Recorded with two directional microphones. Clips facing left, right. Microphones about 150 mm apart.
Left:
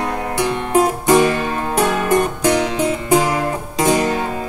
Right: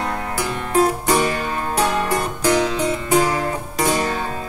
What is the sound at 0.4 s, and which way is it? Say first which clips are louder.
Music: left 3 dB; 20° left (ahead or behind).